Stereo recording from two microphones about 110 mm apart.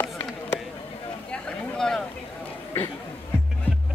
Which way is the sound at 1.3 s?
5° left (ahead or behind).